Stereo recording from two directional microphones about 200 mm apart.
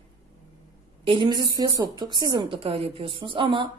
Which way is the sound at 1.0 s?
25° right (ahead or behind).